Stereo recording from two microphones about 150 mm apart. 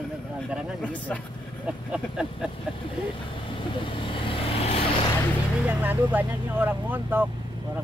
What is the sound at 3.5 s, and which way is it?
Vehicle, 35° left (ahead or behind).